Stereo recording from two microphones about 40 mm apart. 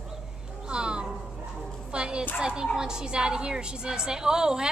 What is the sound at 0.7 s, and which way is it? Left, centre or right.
Cat, right.